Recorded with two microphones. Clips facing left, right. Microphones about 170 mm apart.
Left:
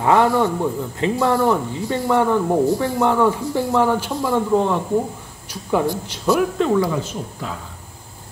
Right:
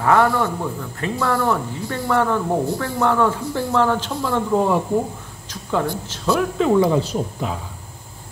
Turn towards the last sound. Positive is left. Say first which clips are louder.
# right 3 dB
turn(degrees=-20)  # may be behind; listen again after turning